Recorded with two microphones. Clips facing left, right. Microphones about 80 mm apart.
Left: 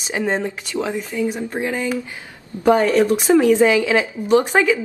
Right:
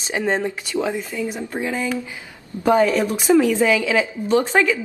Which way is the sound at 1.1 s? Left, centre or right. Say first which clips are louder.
Left 3 dB; centre.